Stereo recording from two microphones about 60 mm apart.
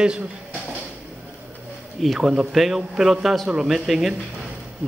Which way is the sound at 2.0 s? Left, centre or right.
Centre.